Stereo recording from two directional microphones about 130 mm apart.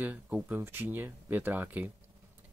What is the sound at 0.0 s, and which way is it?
Speech, 15° right (ahead or behind).